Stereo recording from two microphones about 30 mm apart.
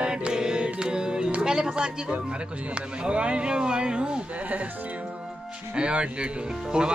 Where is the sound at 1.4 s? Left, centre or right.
Right.